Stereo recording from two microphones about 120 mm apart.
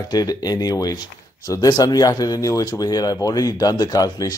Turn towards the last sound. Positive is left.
turn(degrees=30)  # may be behind; listen again after turning